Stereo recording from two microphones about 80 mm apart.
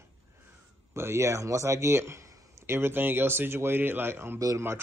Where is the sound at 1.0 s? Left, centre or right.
Right.